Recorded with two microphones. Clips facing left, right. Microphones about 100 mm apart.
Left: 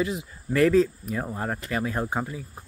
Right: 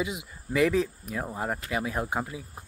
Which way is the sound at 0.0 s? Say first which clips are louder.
Left 4 dB; 10° right (ahead or behind).